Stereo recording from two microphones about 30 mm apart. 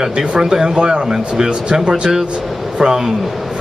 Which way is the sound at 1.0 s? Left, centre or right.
Centre.